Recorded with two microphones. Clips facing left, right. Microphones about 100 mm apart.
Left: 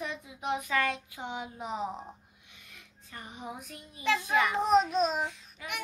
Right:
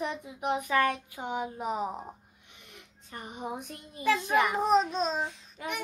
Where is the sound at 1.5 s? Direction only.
5° right (ahead or behind).